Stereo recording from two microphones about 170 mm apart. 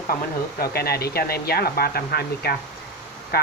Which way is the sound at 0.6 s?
65° left (ahead or behind).